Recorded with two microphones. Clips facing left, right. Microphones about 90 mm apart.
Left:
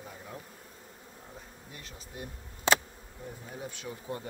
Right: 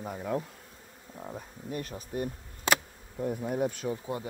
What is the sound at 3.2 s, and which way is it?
Bee, 65° right (ahead or behind).